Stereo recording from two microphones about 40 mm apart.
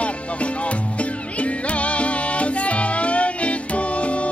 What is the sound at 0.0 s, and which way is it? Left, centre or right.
Music, left.